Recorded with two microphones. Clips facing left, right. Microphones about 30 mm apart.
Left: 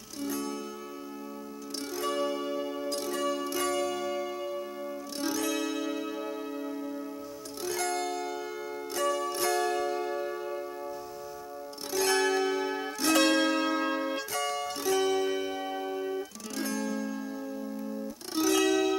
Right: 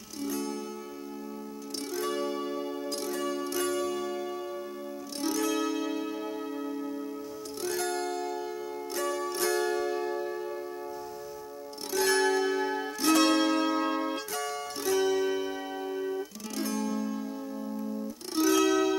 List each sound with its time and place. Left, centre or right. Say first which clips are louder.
0.3 s music: right 1 dB; centre
2.0 s music: left 1 dB; centre
7.6 s music: even; centre
10.2 s music: even; centre
11.9 s zither: right 1 dB; centre
12.4 s music: right 1 dB; centre
18.3 s music: right 1 dB; centre